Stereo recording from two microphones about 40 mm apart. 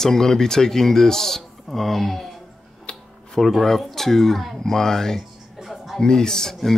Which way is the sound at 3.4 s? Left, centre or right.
Centre.